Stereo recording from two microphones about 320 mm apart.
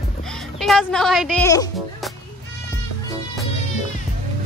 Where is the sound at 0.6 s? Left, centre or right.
Centre.